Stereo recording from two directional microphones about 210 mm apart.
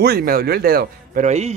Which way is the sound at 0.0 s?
45° right (ahead or behind).